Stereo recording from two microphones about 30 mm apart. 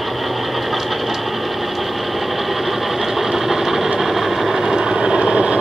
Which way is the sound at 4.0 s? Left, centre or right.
Centre.